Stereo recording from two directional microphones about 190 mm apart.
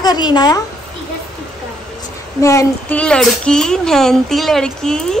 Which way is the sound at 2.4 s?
15° left (ahead or behind).